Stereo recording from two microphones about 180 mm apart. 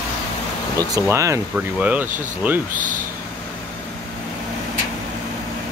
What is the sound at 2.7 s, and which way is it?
Speech, 45° right (ahead or behind).